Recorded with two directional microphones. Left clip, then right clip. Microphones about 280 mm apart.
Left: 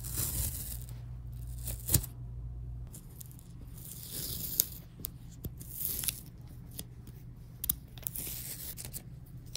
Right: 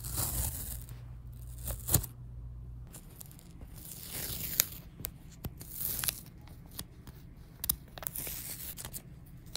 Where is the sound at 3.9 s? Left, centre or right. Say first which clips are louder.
Right 1 dB; right.